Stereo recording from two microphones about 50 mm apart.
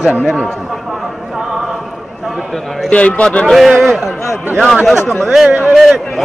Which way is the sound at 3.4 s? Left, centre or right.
Centre.